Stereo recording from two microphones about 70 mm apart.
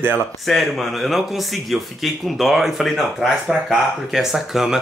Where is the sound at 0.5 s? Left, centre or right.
Centre.